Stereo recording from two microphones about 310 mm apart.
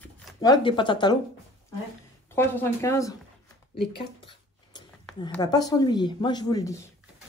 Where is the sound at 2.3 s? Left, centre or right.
Centre.